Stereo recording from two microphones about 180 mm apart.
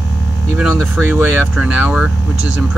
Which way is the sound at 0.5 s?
5° right (ahead or behind).